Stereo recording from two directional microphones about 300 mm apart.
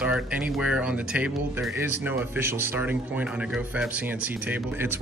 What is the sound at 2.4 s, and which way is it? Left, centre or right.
Speech, centre.